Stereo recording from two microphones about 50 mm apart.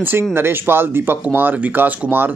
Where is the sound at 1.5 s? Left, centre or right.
Right.